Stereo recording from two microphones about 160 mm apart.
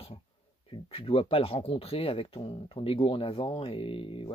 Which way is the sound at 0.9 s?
35° left (ahead or behind).